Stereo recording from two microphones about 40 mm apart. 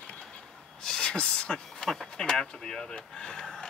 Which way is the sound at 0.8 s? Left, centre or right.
Centre.